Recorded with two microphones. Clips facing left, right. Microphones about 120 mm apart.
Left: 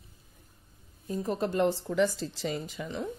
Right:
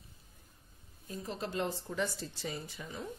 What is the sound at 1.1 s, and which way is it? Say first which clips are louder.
Speech: left 9 dB; 50° left (ahead or behind).